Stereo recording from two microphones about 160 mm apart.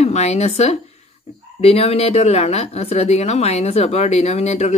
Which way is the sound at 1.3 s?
45° left (ahead or behind).